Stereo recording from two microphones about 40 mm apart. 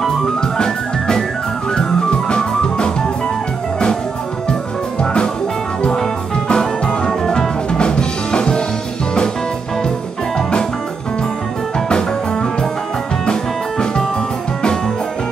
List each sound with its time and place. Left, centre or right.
0.4 s organ: centre
1.8 s music: centre
6.5 s music: centre
13.2 s music: centre